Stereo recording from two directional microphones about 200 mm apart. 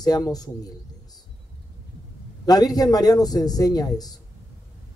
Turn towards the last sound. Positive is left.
turn(degrees=20)  # may be behind; listen again after turning